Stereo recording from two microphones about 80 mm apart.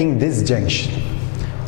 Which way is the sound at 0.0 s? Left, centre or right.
Centre.